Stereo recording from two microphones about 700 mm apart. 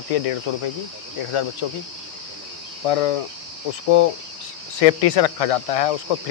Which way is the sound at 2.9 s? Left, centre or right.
Left.